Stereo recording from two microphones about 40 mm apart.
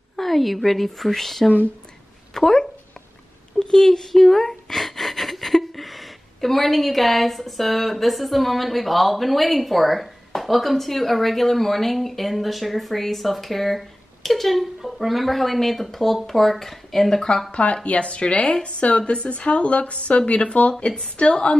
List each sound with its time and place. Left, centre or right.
0.1 s a woman's voice: centre
2.3 s a sound: centre
3.5 s speech: centre
17.5 s a woman's voice: left
20.8 s a woman's voice: left